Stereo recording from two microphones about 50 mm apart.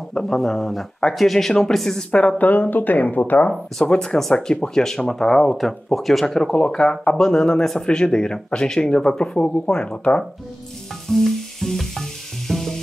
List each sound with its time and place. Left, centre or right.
0.1 s speech: centre
2.0 s speech: left
2.3 s speech: left
3.8 s speech: centre
11.1 s sizzle: centre